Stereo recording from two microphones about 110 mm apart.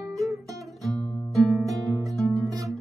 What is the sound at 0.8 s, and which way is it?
Music, centre (ahead or behind).